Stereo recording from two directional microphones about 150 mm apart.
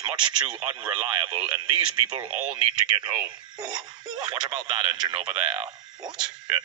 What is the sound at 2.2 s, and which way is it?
Speech, 5° right (ahead or behind).